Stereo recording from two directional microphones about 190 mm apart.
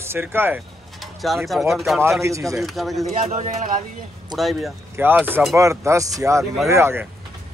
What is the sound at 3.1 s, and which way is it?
Speech, 40° right (ahead or behind).